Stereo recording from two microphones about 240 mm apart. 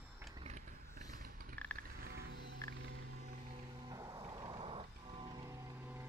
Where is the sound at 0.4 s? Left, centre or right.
Right.